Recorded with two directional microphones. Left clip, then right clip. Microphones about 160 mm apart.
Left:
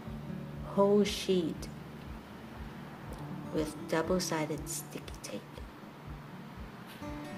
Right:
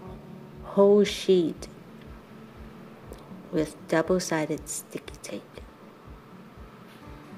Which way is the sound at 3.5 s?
40° right (ahead or behind).